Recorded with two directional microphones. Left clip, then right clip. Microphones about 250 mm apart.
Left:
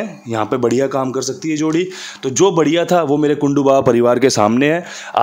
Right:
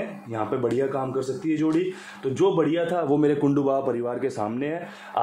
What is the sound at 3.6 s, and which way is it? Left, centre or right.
Speech, left.